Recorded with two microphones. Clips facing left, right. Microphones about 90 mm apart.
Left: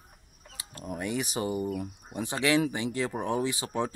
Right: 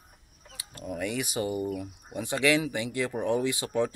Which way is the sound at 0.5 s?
30° left (ahead or behind).